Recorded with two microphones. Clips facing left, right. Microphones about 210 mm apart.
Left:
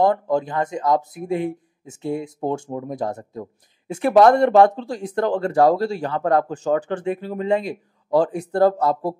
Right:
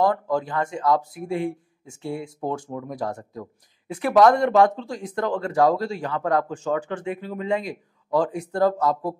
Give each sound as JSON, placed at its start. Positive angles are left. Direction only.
{"t": 0.0, "sound": "speech", "side_deg": 25}